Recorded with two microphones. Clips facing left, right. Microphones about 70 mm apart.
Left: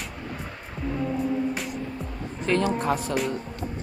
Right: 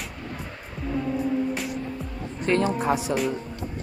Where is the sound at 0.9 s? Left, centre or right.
Centre.